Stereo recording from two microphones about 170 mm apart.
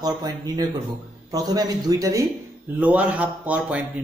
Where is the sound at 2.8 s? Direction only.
10° right (ahead or behind).